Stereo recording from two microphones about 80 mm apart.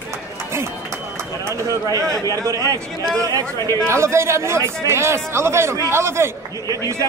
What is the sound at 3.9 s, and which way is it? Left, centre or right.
A man's voice, right.